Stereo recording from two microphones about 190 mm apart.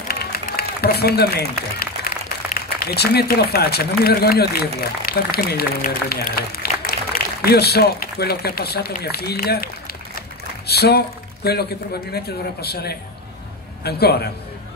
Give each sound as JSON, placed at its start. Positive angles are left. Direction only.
{"t": 0.1, "sound": "a sound", "side_deg": 55}
{"t": 2.8, "sound": "a man's voice", "side_deg": 55}
{"t": 10.7, "sound": "a man's voice", "side_deg": 55}